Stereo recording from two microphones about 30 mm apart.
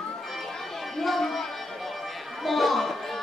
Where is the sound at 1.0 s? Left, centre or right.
Centre.